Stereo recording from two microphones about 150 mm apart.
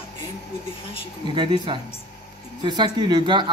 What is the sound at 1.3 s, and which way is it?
Speech, 30° right (ahead or behind).